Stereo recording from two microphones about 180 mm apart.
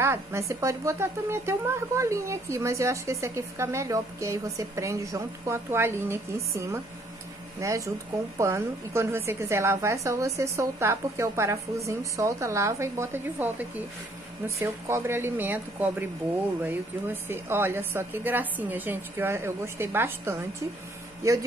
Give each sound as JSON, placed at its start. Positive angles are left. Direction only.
{"t": 0.0, "sound": "a woman's voice", "side_deg": -15}